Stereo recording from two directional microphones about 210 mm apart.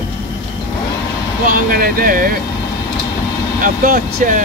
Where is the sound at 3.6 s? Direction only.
45° right (ahead or behind).